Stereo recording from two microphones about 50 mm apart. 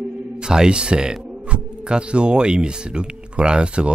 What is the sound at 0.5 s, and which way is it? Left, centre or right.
Speech, centre.